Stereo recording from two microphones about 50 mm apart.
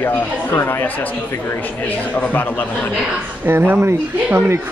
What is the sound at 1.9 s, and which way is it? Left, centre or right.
Speech, left.